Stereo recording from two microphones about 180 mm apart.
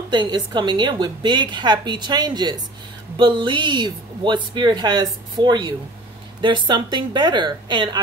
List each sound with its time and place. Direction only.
0.1 s speech: 25° right (ahead or behind)